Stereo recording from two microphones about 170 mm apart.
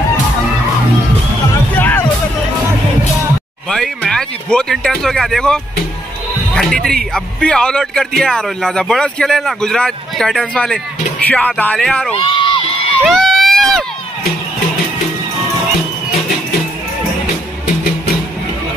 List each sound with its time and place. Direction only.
1.8 s music: 10° left (ahead or behind)
3.6 s a man's voice: 5° left (ahead or behind)
12.2 s crowd: 30° left (ahead or behind)
13.0 s run: centre (ahead or behind)